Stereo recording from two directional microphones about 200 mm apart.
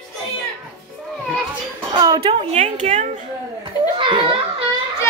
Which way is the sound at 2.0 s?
25° right (ahead or behind).